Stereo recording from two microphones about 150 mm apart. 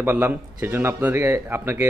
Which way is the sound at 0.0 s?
15° right (ahead or behind).